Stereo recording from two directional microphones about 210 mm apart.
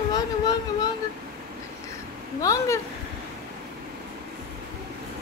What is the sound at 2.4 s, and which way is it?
Speech, 15° left (ahead or behind).